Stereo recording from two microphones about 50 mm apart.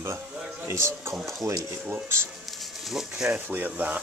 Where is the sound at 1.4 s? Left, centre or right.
Right.